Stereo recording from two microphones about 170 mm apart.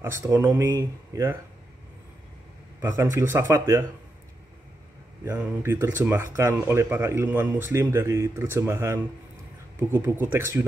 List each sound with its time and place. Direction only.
0.0 s speech: 20° right (ahead or behind)
2.8 s speech: 15° right (ahead or behind)
5.2 s speech: 10° right (ahead or behind)